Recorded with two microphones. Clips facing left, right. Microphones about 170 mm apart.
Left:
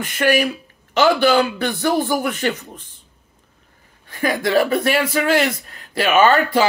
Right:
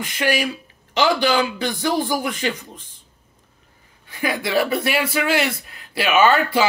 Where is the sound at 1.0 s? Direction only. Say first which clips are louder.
Left 4 dB; 55° left (ahead or behind).